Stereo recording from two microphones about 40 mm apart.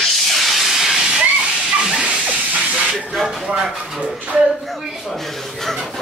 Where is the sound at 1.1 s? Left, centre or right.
Centre.